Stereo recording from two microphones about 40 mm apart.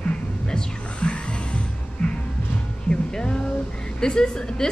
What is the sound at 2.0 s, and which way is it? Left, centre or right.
Music, centre.